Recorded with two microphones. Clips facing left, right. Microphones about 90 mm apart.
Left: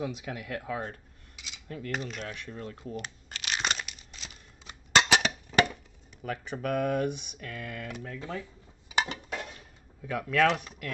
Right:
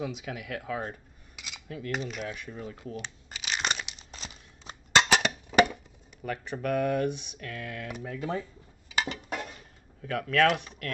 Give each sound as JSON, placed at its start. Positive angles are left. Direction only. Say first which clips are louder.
{"t": 0.0, "sound": "speech", "louder": "even", "side_deg": 0}
{"t": 2.9, "sound": "crumpling", "louder": "left 1 dB", "side_deg": 0}
{"t": 4.1, "sound": "a sound", "louder": "right 3 dB", "side_deg": -40}
{"t": 4.9, "sound": "a sound", "louder": "right 1 dB", "side_deg": 0}
{"t": 5.5, "sound": "a sound", "louder": "right 3 dB", "side_deg": -10}
{"t": 6.2, "sound": "speech", "louder": "right 1 dB", "side_deg": 0}
{"t": 8.2, "sound": "speech", "louder": "right 7 dB", "side_deg": -15}
{"t": 8.9, "sound": "dishes", "louder": "left 1 dB", "side_deg": 20}
{"t": 10.0, "sound": "speech", "louder": "right 1 dB", "side_deg": 5}